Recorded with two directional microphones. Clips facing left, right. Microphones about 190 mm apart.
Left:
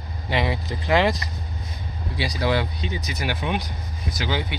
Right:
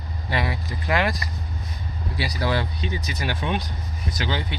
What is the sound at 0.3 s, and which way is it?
Speech, 25° left (ahead or behind).